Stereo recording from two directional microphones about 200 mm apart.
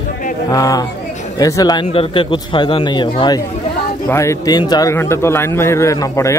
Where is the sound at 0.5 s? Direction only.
20° left (ahead or behind).